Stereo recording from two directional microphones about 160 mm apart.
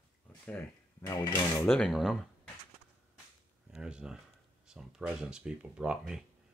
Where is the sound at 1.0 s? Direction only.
25° left (ahead or behind).